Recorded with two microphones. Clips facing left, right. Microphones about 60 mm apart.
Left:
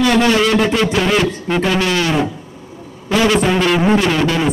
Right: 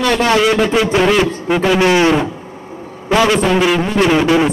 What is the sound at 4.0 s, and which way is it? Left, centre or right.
Speech, centre.